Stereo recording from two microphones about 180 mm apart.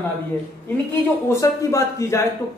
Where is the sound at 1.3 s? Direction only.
15° left (ahead or behind).